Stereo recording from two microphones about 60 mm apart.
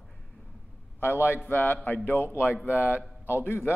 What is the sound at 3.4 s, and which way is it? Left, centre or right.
Speech, left.